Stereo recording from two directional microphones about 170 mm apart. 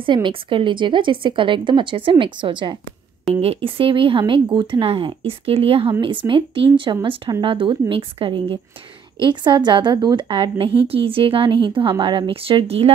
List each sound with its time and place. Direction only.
0.0 s speech: 30° right (ahead or behind)